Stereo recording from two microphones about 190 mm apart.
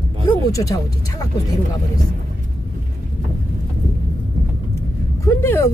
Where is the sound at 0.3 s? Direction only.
20° left (ahead or behind).